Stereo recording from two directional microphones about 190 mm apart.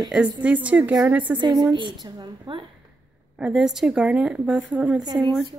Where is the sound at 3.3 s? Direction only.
Centre (ahead or behind).